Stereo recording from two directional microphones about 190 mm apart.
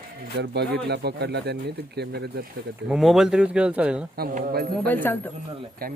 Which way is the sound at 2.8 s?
Centre (ahead or behind).